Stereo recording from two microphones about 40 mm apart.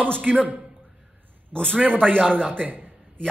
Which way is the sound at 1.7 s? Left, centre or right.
Right.